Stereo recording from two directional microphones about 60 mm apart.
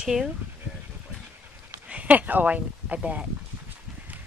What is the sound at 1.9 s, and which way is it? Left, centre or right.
Speech, right.